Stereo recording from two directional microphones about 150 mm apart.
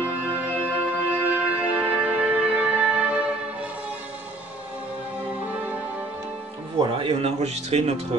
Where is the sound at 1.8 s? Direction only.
10° right (ahead or behind).